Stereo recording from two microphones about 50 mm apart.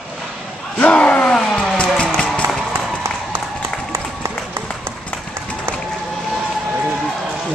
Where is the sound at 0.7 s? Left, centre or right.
Left.